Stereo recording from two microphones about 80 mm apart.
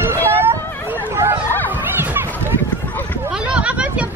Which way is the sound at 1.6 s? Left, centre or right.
Right.